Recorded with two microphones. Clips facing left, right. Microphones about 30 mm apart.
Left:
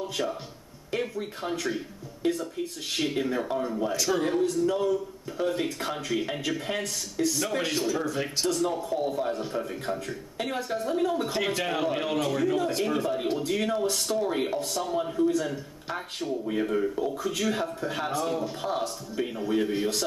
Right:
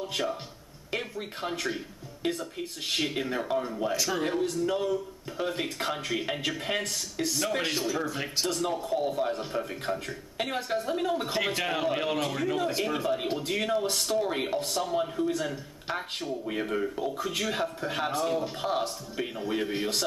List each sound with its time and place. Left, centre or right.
0.0 s a man's voice: centre